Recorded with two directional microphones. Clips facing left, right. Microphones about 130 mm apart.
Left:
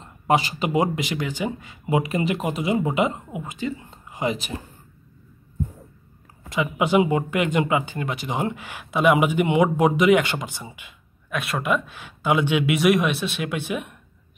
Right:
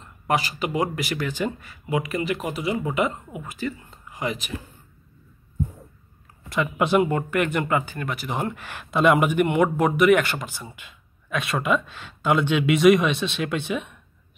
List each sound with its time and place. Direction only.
0.0 s speech: 25° left (ahead or behind)
6.5 s speech: 10° left (ahead or behind)